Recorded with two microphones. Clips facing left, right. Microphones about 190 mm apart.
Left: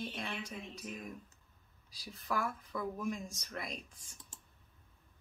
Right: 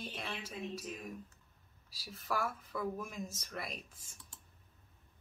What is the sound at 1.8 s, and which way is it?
Speech, 5° right (ahead or behind).